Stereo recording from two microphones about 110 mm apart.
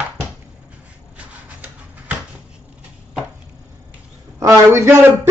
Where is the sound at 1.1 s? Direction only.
10° right (ahead or behind).